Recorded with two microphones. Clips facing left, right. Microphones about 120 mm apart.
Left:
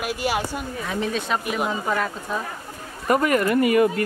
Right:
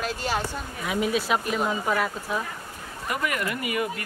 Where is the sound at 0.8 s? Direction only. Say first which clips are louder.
Right 2 dB; 10° right (ahead or behind).